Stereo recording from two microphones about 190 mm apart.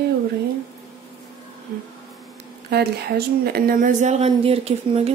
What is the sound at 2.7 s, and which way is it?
A woman's voice, 55° right (ahead or behind).